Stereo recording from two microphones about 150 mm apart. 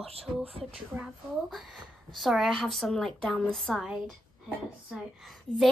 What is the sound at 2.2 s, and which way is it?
A woman's voice, centre (ahead or behind).